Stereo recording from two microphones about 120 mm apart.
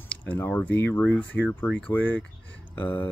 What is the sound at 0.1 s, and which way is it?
Speech, 10° left (ahead or behind).